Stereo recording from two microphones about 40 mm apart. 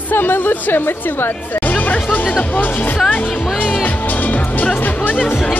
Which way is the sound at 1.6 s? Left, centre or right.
Left.